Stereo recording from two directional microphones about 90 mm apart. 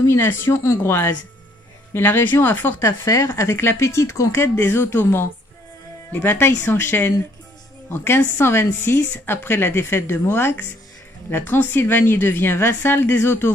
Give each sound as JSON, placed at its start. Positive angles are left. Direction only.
{"t": 0.0, "sound": "a woman's voice", "side_deg": 30}
{"t": 3.1, "sound": "a woman's voice", "side_deg": 35}